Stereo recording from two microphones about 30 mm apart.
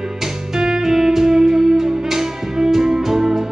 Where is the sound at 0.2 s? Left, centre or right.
Centre.